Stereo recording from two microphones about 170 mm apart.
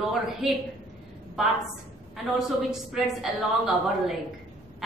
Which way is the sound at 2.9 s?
Centre (ahead or behind).